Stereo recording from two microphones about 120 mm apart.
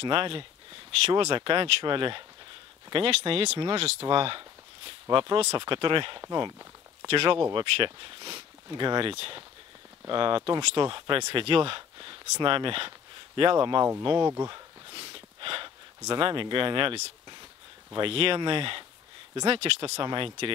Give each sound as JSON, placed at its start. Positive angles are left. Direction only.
{"t": 0.0, "sound": "speech", "side_deg": -45}
{"t": 14.3, "sound": "a sound", "side_deg": -35}
{"t": 17.9, "sound": "speech", "side_deg": -45}